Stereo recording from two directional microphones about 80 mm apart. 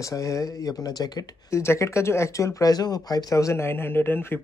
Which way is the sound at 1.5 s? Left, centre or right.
Left.